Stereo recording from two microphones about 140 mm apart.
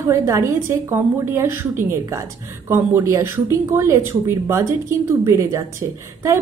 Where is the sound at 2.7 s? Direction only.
20° right (ahead or behind).